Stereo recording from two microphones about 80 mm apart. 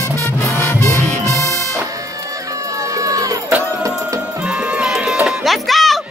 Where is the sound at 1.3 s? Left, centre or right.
Right.